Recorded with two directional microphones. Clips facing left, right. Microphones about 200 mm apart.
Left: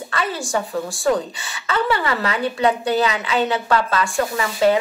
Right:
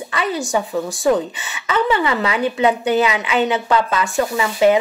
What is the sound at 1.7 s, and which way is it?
A woman's voice, 20° right (ahead or behind).